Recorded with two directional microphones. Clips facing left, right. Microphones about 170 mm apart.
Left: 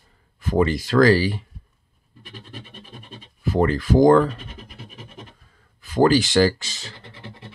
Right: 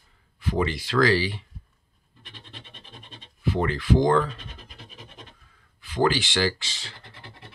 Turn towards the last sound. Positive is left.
turn(degrees=45)  # may be behind; listen again after turning